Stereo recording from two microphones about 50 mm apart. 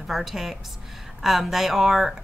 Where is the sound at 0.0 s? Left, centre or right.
Centre.